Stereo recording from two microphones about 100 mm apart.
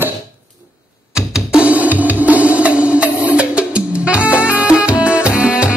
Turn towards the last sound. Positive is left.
turn(degrees=-10)  # may be behind; listen again after turning